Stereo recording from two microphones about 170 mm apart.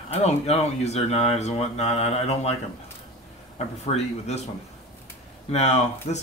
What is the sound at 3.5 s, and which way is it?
Speech, 40° left (ahead or behind).